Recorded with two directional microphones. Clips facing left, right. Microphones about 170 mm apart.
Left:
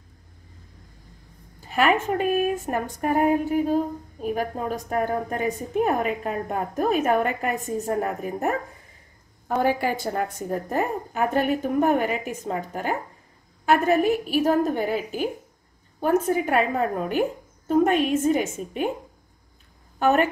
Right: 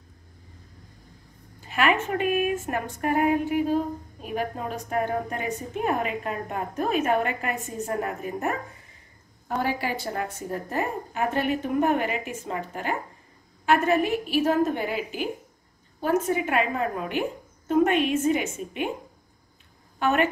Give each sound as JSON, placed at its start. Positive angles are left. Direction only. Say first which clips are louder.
{"t": 1.7, "sound": "a woman's voice", "louder": "left 3 dB", "side_deg": 35}
{"t": 9.7, "sound": "a woman's voice", "louder": "left 5 dB", "side_deg": 50}
{"t": 16.3, "sound": "a woman's voice", "louder": "left 3 dB", "side_deg": 40}
{"t": 20.0, "sound": "a woman's voice", "louder": "left 3 dB", "side_deg": 40}